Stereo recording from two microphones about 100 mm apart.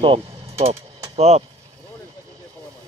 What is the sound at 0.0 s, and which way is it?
Vehicle, 75° right (ahead or behind).